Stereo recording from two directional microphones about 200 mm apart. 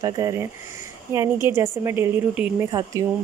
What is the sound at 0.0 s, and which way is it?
Speech, 15° right (ahead or behind).